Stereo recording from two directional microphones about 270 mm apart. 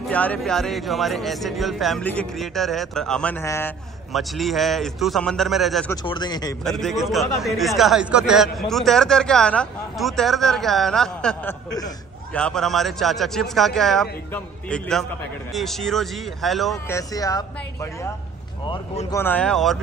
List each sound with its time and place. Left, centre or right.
0.1 s speech: centre
6.0 s speech: centre
6.6 s speech: centre
16.9 s speech: centre
18.7 s speech: centre